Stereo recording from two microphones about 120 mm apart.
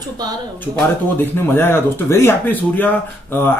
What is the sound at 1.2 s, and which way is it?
Speech, 20° left (ahead or behind).